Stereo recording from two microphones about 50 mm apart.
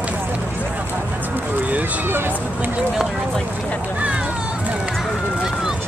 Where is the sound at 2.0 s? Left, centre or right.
Right.